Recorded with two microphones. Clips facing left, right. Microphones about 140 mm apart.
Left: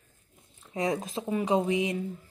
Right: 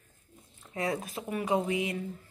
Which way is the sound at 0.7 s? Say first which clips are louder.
Left 3 dB; 20° left (ahead or behind).